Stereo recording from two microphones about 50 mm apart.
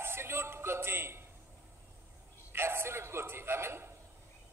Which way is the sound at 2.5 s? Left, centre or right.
Right.